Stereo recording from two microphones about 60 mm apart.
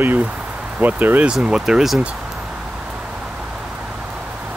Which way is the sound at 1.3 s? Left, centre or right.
Centre.